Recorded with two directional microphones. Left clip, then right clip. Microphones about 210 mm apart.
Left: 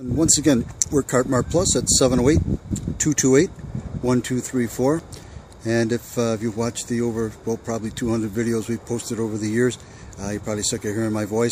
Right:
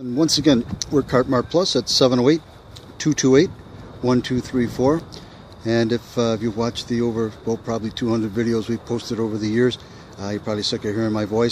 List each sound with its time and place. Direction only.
0.2 s speech: 5° left (ahead or behind)